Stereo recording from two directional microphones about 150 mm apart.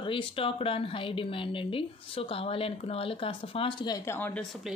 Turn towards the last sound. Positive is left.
turn(degrees=15)  # may be behind; listen again after turning